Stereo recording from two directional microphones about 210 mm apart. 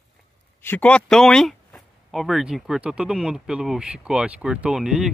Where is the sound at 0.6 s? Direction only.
10° left (ahead or behind).